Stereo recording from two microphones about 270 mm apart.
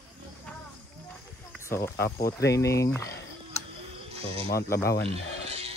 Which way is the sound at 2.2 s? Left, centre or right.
Left.